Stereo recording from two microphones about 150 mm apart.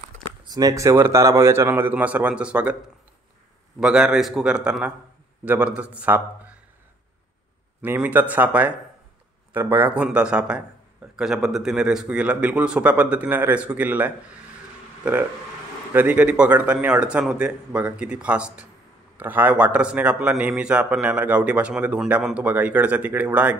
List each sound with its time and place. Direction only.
0.5 s a man's voice: 25° right (ahead or behind); by 2.8 s 10° right (ahead or behind)
3.8 s a man's voice: 5° right (ahead or behind)
7.8 s a man's voice: 10° right (ahead or behind)
15.9 s a man's voice: 10° right (ahead or behind)